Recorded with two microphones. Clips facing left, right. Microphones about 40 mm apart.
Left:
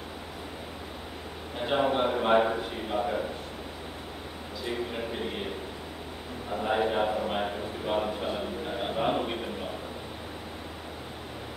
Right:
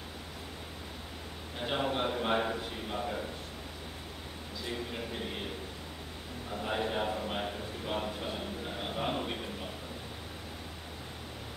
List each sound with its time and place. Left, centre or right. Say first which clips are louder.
1.6 s a man's voice: left 6 dB; centre
4.6 s a man's voice: left 6 dB; centre
6.5 s speech: left 6 dB; centre